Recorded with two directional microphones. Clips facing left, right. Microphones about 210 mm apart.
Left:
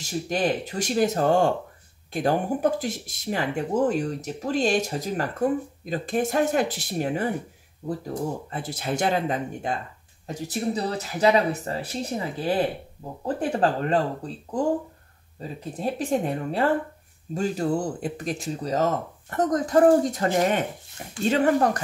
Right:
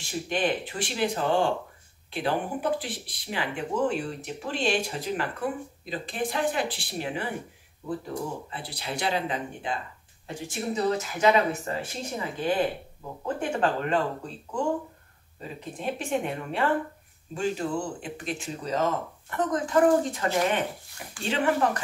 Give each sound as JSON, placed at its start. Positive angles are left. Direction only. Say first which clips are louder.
{"t": 0.0, "sound": "speech", "louder": "left 3 dB", "side_deg": 40}
{"t": 8.5, "sound": "speech", "louder": "left 7 dB", "side_deg": 45}